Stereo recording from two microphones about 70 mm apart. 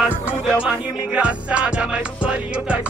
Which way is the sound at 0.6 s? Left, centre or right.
Centre.